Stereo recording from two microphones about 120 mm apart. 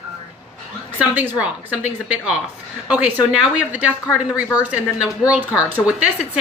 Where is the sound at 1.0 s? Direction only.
10° right (ahead or behind).